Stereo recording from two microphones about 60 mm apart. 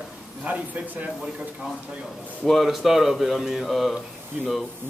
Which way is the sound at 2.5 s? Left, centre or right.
Centre.